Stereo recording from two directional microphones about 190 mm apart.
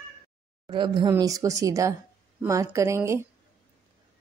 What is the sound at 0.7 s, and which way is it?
Speech, 25° right (ahead or behind).